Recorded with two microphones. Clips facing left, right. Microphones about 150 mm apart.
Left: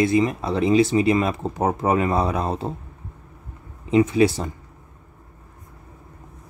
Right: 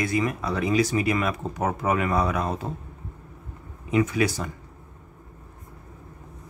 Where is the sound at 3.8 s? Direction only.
25° left (ahead or behind).